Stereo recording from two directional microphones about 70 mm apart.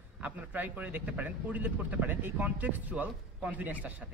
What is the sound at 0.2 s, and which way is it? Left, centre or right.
A man's voice, right.